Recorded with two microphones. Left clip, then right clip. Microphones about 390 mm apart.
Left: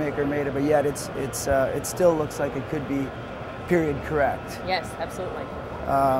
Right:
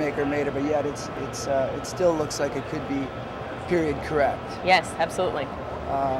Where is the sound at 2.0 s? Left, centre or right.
Left.